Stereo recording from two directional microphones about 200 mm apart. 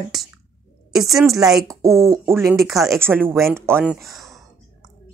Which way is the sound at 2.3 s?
Centre (ahead or behind).